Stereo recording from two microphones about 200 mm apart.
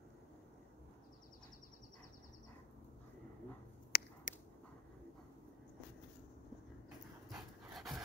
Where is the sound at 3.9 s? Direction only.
50° left (ahead or behind).